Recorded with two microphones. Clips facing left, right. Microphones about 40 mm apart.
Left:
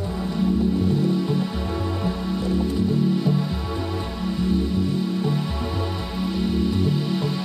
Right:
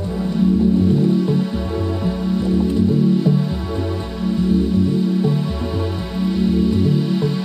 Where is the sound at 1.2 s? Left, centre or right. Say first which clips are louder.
Right 5 dB; centre.